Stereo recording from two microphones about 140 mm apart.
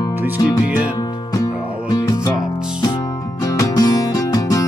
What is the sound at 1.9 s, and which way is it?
Music, 25° left (ahead or behind).